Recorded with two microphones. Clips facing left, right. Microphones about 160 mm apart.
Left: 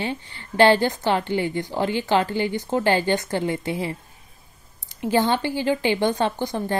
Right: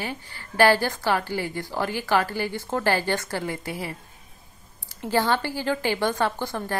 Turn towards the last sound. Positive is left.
turn(degrees=20)  # may be behind; listen again after turning